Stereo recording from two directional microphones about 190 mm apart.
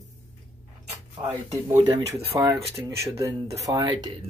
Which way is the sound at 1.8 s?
20° right (ahead or behind).